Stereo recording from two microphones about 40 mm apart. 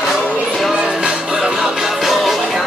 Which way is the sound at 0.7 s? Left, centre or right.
Right.